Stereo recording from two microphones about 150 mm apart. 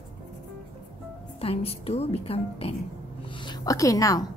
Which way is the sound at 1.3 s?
40° left (ahead or behind).